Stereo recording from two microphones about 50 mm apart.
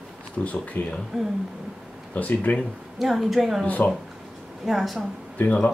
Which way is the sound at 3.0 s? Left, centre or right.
Centre.